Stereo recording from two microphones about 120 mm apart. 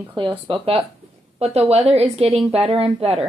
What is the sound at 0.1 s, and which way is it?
Speech, 45° right (ahead or behind).